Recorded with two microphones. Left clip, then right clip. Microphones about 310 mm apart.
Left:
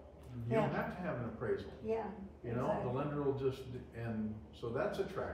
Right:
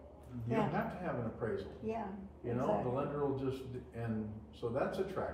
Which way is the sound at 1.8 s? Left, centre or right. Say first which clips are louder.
Left 3 dB; right.